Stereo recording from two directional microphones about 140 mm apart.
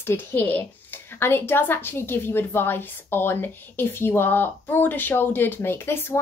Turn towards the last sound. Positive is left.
turn(degrees=15)  # may be behind; listen again after turning